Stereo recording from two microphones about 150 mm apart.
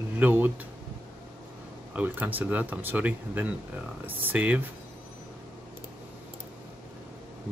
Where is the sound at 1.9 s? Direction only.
10° right (ahead or behind).